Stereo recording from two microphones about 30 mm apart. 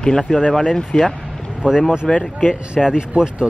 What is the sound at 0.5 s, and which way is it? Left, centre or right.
Speech, left.